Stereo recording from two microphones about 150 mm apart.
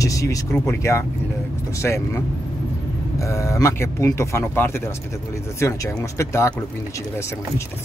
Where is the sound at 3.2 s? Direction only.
20° left (ahead or behind).